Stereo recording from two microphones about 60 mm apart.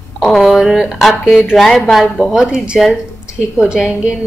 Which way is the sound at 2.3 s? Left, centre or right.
Centre.